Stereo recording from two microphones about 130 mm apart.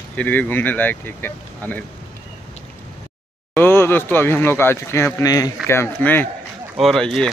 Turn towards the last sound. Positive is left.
turn(degrees=5)  # may be behind; listen again after turning